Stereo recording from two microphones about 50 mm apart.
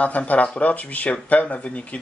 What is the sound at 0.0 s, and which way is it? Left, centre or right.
Speech, left.